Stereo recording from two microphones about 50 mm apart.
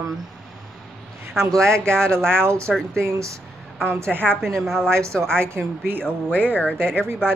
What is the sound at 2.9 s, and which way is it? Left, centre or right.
Speech, right.